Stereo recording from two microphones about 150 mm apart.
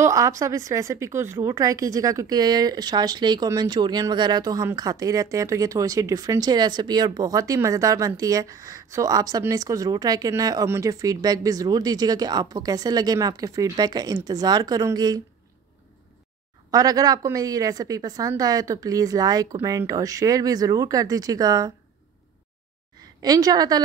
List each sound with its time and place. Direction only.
0.0 s speech: 20° right (ahead or behind)
16.7 s speech: 25° right (ahead or behind)
23.2 s speech: 25° right (ahead or behind)